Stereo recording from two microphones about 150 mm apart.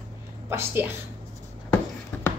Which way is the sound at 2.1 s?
10° left (ahead or behind).